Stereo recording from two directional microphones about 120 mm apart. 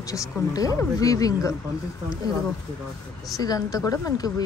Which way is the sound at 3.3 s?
30° left (ahead or behind).